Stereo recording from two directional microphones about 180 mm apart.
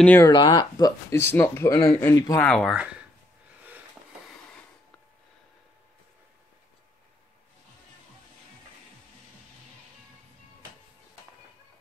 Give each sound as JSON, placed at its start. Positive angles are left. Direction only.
{"t": 0.0, "sound": "speech", "side_deg": 10}
{"t": 0.3, "sound": "speech", "side_deg": 25}
{"t": 2.4, "sound": "speech", "side_deg": 5}